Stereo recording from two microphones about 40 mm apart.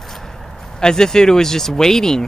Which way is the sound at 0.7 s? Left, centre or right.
Centre.